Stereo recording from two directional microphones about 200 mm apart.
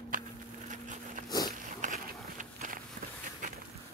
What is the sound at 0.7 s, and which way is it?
Dog, 40° right (ahead or behind).